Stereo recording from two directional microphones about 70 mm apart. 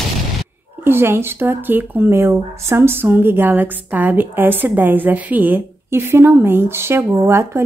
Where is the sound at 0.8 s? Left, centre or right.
Right.